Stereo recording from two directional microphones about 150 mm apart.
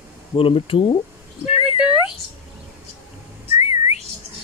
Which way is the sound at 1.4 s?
5° right (ahead or behind).